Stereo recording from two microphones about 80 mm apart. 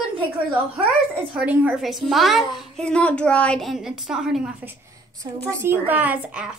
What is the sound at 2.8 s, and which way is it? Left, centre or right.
Speech, centre.